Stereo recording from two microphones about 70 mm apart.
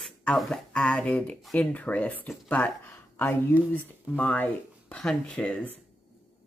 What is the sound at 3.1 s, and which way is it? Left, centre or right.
Speech, left.